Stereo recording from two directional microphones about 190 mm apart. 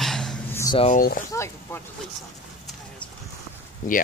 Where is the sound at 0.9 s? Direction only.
45° left (ahead or behind).